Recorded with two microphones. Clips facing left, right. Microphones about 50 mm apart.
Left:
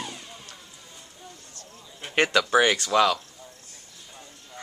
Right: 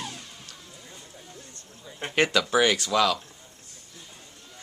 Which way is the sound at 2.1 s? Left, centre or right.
Centre.